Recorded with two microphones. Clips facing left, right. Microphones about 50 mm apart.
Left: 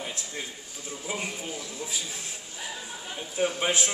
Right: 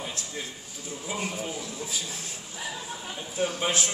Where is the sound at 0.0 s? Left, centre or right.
Centre.